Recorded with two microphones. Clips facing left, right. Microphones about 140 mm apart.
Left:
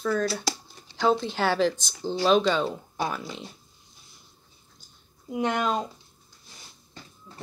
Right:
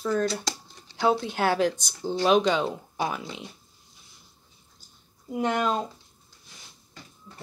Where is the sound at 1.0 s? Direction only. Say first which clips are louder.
Even; 10° right (ahead or behind).